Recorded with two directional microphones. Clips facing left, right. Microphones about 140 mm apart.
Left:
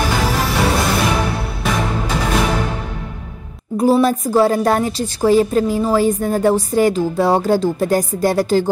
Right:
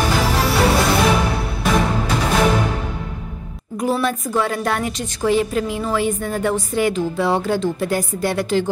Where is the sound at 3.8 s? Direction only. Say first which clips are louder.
Left 6 dB; 35° left (ahead or behind).